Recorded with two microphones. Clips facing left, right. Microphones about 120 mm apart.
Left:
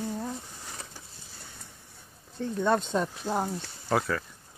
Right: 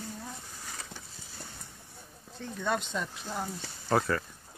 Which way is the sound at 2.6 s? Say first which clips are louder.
Left 6 dB; 35° left (ahead or behind).